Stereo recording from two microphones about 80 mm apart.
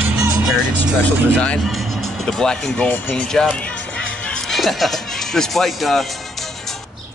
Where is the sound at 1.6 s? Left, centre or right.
Centre.